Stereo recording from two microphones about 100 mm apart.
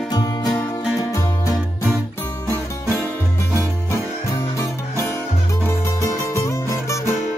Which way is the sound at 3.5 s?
25° left (ahead or behind).